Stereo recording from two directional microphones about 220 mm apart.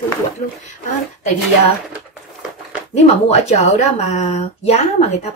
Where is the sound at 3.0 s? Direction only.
30° left (ahead or behind).